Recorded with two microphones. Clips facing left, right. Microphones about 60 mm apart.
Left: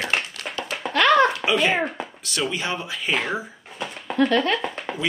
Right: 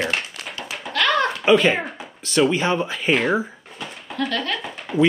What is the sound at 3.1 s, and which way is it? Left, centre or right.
Speech, centre.